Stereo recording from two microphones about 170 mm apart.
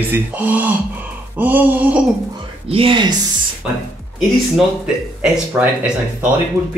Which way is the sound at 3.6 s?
5° right (ahead or behind).